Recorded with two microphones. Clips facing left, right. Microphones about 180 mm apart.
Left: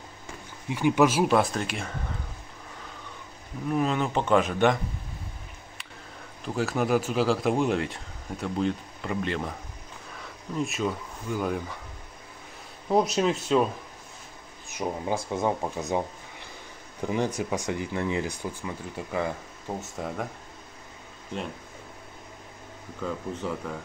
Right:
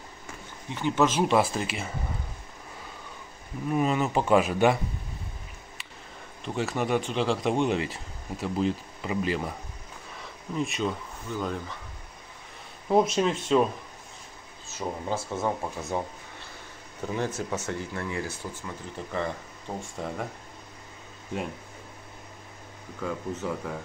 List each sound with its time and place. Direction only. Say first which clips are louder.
0.7 s speech: left 3 dB; 10° left (ahead or behind)
3.7 s speech: right 1 dB; 5° right (ahead or behind)
6.4 s speech: left 2 dB; centre (ahead or behind)
12.9 s speech: even; centre (ahead or behind)
14.7 s speech: left 2 dB; 15° left (ahead or behind)
22.9 s speech: even; 5° right (ahead or behind)